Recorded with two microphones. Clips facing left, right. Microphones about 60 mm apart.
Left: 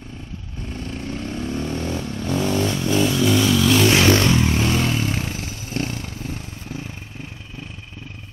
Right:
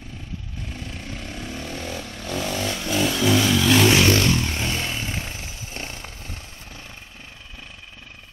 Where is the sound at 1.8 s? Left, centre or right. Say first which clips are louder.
Left 6 dB; centre.